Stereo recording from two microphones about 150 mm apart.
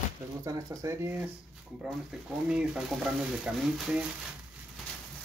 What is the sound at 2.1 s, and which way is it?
Stir, 5° right (ahead or behind).